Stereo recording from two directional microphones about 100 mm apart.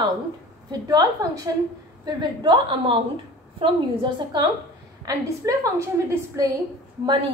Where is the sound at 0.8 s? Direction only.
40° right (ahead or behind); by 4.4 s 55° right (ahead or behind).